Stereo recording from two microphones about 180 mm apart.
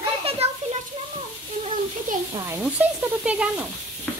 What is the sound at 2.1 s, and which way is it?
Speech, 50° right (ahead or behind).